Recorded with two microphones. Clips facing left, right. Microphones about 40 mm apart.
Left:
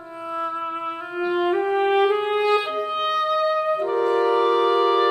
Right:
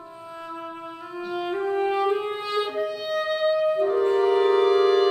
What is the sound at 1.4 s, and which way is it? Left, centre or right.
Music, left.